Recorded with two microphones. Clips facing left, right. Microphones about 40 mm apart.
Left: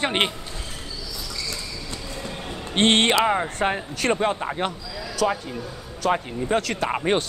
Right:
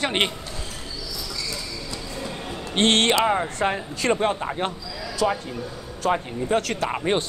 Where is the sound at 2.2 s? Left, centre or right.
Left.